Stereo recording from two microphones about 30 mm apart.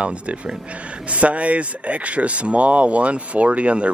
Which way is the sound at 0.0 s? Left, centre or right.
Right.